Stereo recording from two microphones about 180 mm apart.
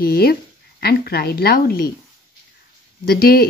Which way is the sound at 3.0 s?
60° left (ahead or behind).